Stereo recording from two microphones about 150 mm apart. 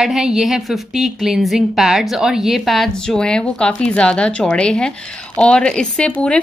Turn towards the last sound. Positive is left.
turn(degrees=5)  # may be behind; listen again after turning